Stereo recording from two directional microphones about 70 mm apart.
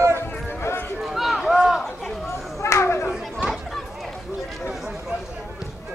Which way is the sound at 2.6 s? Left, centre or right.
Left.